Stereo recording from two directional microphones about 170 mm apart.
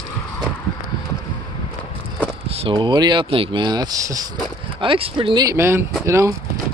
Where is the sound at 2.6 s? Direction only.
30° right (ahead or behind).